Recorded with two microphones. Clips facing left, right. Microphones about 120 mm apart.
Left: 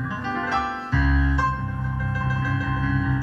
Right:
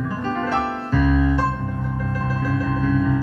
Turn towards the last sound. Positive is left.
turn(degrees=-40)  # may be behind; listen again after turning